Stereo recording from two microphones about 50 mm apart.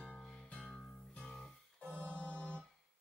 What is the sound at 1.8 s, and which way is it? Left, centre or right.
Music, left.